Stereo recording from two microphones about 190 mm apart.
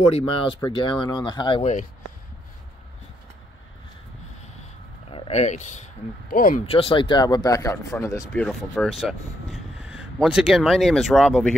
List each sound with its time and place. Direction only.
0.1 s speech: 30° left (ahead or behind)
5.1 s speech: 35° left (ahead or behind)
6.6 s speech: 30° left (ahead or behind)
8.4 s speech: centre (ahead or behind)